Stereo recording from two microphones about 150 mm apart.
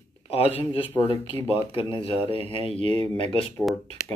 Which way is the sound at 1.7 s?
35° left (ahead or behind).